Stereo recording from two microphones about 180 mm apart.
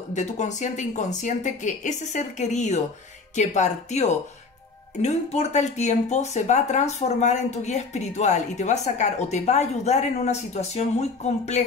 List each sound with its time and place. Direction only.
0.1 s speech: 40° left (ahead or behind)